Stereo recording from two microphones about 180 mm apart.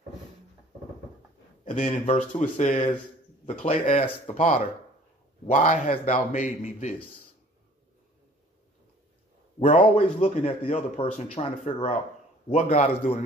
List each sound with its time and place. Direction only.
1.6 s speech: 45° left (ahead or behind)
4.4 s speech: 45° left (ahead or behind)
9.6 s speech: 40° left (ahead or behind)